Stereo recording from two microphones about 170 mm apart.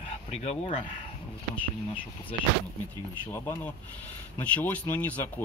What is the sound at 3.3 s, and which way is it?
Speech, 15° left (ahead or behind).